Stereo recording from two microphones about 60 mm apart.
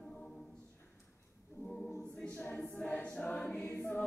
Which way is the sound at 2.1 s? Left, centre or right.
Centre.